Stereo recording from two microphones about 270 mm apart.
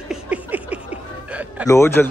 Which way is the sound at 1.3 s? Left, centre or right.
Centre.